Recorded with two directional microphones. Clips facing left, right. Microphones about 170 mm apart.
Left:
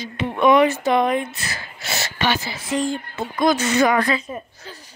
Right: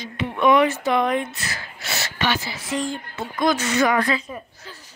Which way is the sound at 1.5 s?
25° left (ahead or behind).